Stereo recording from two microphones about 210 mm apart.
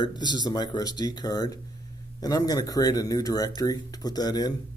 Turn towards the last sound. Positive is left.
turn(degrees=20)  # may be behind; listen again after turning